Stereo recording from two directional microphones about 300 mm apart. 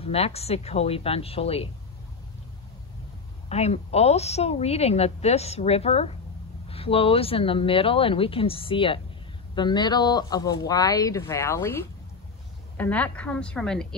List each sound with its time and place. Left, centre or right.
0.0 s a woman's voice: centre
3.4 s a woman's voice: left; by 13.8 s centre